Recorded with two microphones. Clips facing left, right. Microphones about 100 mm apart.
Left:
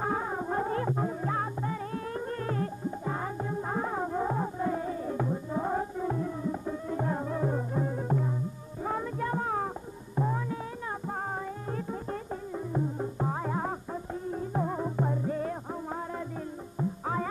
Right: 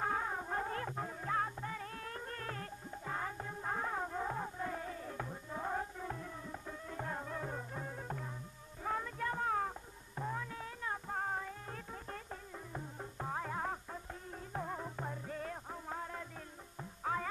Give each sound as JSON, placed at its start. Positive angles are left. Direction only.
{"t": 0.0, "sound": "music", "side_deg": 20}
{"t": 11.7, "sound": "music", "side_deg": 20}
{"t": 17.0, "sound": "music", "side_deg": 20}